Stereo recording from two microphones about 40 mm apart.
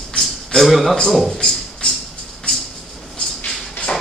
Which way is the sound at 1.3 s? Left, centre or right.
Centre.